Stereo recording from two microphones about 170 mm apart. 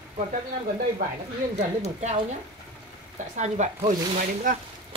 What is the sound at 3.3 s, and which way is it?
Speech, 40° right (ahead or behind).